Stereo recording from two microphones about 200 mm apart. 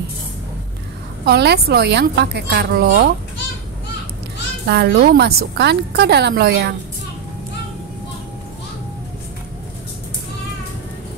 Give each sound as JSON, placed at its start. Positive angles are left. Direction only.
{"t": 1.2, "sound": "a woman's voice", "side_deg": -55}
{"t": 4.6, "sound": "a woman's voice", "side_deg": -55}